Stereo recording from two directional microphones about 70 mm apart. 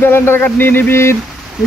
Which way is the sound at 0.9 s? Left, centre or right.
Left.